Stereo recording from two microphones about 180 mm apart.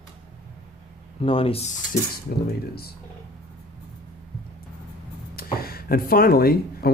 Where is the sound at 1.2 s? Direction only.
30° left (ahead or behind).